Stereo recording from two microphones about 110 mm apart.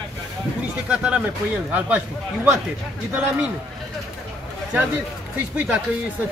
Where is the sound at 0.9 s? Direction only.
10° right (ahead or behind).